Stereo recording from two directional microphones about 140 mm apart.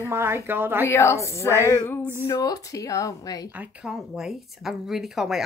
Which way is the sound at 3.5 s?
10° right (ahead or behind).